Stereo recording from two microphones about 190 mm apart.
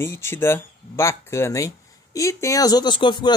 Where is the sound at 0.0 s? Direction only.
15° left (ahead or behind).